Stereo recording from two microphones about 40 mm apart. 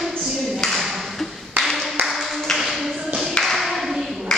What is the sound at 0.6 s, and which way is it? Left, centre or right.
Tap, centre.